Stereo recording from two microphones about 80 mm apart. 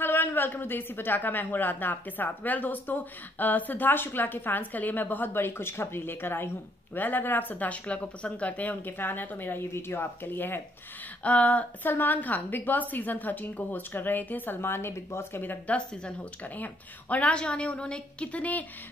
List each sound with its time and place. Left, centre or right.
0.0 s a woman's voice: left